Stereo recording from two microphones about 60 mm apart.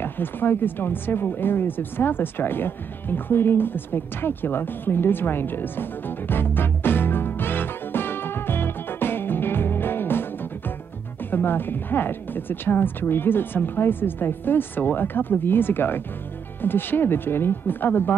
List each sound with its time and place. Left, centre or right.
0.0 s speech: left
11.2 s speech: left